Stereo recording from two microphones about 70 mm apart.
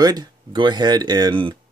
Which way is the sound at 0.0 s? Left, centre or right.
Right.